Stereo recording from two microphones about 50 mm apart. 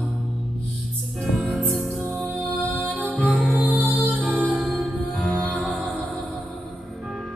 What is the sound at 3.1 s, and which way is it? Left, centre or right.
Music, right.